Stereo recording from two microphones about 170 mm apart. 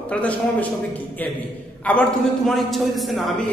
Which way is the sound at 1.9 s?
10° left (ahead or behind).